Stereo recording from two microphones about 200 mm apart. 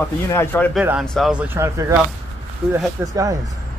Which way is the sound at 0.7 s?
5° right (ahead or behind).